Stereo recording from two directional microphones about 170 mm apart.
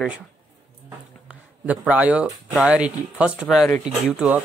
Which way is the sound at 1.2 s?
10° right (ahead or behind).